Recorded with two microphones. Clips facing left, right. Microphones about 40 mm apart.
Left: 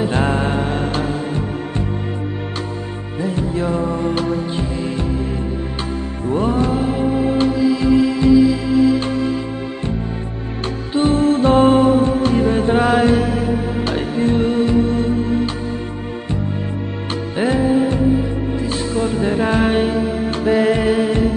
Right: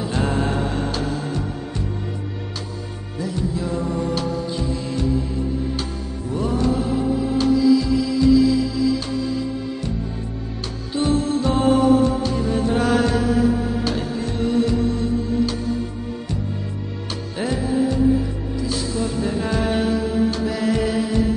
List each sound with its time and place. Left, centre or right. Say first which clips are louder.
0.0 s music: left 4 dB; left
3.2 s music: left 4 dB; left
6.2 s music: left 4 dB; left
10.9 s music: left 5 dB; left
17.4 s music: left 6 dB; left